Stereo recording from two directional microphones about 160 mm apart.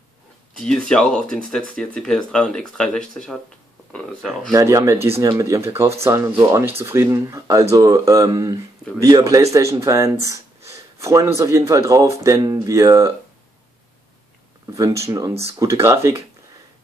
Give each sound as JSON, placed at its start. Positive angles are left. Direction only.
{"t": 0.6, "sound": "speech", "side_deg": 5}
{"t": 4.5, "sound": "speech", "side_deg": -20}
{"t": 4.9, "sound": "speech", "side_deg": -40}
{"t": 5.2, "sound": "a man's voice", "side_deg": -20}
{"t": 14.7, "sound": "speech", "side_deg": -20}